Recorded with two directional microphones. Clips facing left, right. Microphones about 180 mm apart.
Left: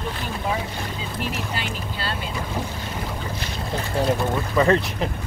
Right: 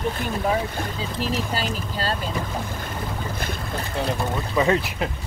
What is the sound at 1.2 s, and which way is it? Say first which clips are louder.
Speech: right 4 dB; 40° right (ahead or behind).